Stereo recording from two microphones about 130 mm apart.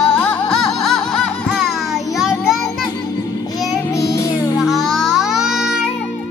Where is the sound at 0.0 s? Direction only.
10° left (ahead or behind).